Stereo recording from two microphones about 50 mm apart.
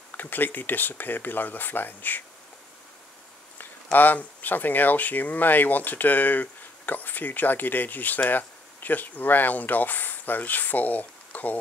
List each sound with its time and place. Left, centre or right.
0.2 s speech: left
3.5 s speech: left